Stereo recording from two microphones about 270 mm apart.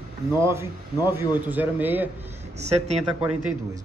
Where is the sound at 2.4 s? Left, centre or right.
Right.